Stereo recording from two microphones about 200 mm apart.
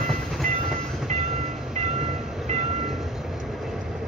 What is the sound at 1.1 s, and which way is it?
Train, 35° right (ahead or behind).